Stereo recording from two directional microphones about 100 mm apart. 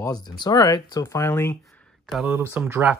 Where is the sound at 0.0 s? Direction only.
40° left (ahead or behind).